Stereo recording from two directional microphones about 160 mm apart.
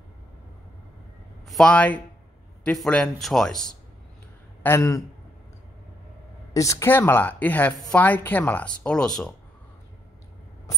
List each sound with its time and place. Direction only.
1.5 s a man's voice: 5° left (ahead or behind)
4.6 s speech: 15° left (ahead or behind)
6.5 s speech: 20° left (ahead or behind); by 9.3 s 5° left (ahead or behind)